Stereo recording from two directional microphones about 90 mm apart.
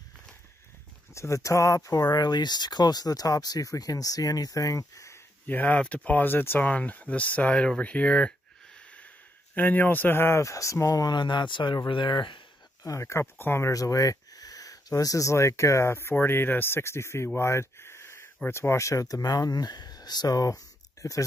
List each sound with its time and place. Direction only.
1.1 s speech: 35° left (ahead or behind)
5.5 s speech: 20° left (ahead or behind); by 11.1 s 40° left (ahead or behind)
11.1 s speech: 60° left (ahead or behind)
12.8 s speech: 35° left (ahead or behind)